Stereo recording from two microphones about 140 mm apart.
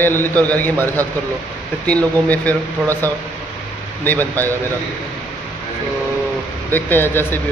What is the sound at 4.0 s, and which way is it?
Speech, 15° left (ahead or behind).